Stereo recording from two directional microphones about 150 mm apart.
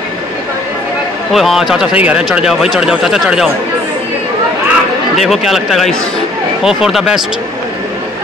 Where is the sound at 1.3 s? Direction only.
Centre (ahead or behind).